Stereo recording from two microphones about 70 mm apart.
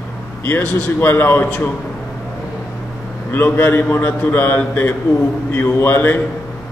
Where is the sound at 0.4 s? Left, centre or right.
Left.